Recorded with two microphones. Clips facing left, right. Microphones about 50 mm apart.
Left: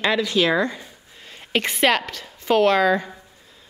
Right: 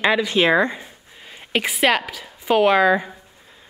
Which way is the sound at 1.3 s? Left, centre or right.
Centre.